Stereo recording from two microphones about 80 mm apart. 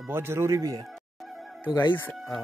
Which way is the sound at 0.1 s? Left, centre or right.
Right.